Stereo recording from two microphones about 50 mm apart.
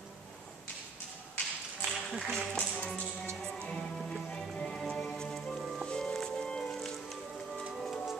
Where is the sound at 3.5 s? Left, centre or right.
Centre.